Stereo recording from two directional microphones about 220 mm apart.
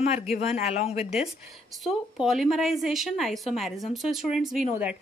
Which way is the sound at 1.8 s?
Centre (ahead or behind).